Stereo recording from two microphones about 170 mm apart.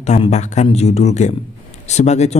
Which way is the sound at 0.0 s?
40° left (ahead or behind).